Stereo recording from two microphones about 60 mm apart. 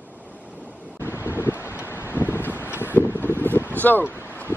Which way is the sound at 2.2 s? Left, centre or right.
Left.